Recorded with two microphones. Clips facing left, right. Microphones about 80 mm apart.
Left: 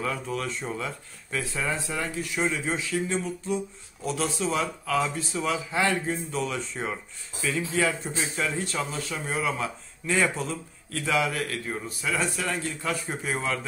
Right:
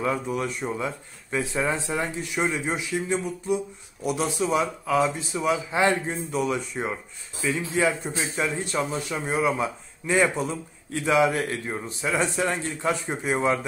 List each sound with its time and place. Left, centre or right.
0.0 s speech: centre